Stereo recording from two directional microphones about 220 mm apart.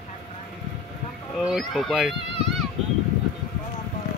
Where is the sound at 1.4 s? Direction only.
Centre (ahead or behind).